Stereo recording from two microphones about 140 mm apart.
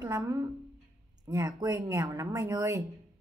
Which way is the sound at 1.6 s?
25° right (ahead or behind).